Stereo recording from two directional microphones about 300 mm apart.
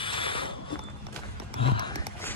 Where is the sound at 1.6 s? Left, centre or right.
Centre.